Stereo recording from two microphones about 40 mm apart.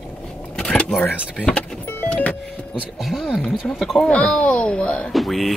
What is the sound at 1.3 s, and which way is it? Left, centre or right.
Speech, left.